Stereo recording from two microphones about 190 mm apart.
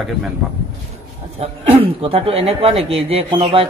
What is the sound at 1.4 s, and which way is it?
Speech, 30° right (ahead or behind).